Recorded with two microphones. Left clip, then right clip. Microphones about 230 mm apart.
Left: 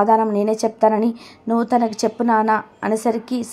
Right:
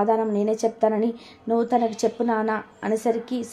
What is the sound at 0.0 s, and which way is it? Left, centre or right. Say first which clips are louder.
A woman's voice: left 6 dB; left.